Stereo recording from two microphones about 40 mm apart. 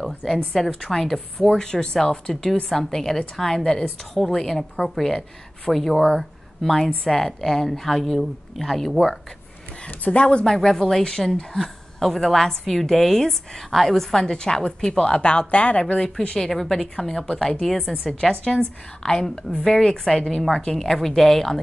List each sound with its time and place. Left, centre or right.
0.0 s a woman's voice: centre
9.8 s speech: left
10.5 s a woman's voice: centre
15.5 s speech: left
16.0 s speech: centre
16.4 s a woman's voice: centre
18.3 s a woman's voice: centre